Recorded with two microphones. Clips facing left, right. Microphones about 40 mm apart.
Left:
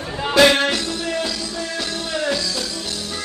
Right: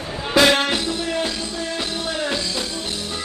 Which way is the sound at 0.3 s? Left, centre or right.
Right.